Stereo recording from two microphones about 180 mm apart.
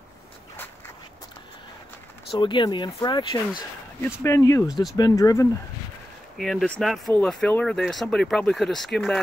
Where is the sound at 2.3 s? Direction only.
25° left (ahead or behind).